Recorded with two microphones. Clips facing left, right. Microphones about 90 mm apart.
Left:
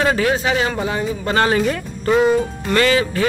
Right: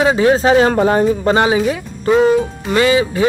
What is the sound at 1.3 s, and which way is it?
Speech, 15° right (ahead or behind).